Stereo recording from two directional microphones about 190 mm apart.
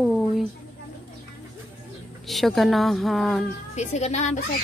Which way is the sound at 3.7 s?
35° left (ahead or behind).